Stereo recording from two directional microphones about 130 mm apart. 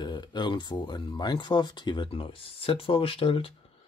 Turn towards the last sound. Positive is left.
turn(degrees=45)  # may be behind; listen again after turning